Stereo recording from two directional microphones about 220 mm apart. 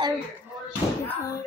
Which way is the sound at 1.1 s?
15° left (ahead or behind).